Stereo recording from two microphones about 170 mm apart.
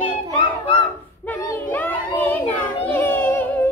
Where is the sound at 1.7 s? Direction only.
10° left (ahead or behind).